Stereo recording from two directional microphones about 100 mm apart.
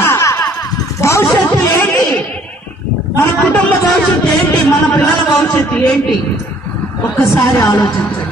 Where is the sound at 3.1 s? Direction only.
15° left (ahead or behind).